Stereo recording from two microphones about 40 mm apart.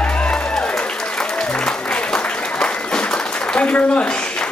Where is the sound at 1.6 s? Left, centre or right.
Left.